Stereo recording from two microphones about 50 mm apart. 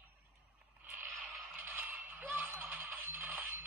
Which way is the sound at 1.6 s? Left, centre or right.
Right.